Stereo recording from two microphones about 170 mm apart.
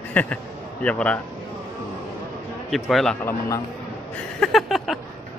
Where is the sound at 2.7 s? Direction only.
Centre (ahead or behind).